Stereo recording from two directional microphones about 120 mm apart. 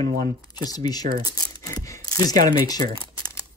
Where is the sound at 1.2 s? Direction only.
30° left (ahead or behind).